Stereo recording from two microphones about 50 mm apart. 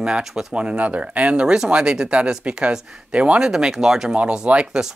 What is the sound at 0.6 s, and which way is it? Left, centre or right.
Speech, right.